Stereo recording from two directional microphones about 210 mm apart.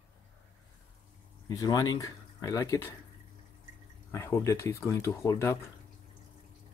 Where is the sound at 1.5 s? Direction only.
15° left (ahead or behind).